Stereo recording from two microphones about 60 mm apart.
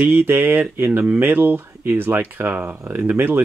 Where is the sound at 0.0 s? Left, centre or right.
Right.